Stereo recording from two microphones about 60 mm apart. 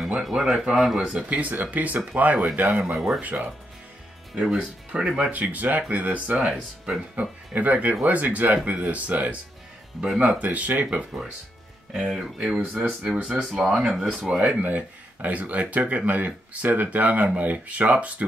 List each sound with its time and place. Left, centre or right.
0.1 s speech: centre
1.5 s speech: right
2.8 s speech: centre
3.2 s speech: right
4.4 s speech: centre
5.3 s speech: right
6.2 s speech: centre
7.2 s speech: right
10.0 s speech: centre
10.4 s speech: right
11.9 s speech: centre
14.3 s speech: right